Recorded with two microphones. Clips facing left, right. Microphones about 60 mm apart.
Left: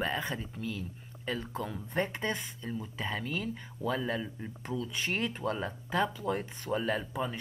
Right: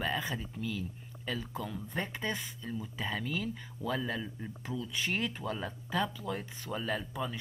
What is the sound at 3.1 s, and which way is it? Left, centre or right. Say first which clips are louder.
Speech: even; left.